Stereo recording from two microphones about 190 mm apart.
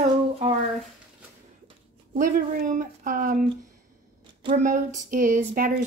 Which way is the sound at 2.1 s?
40° right (ahead or behind).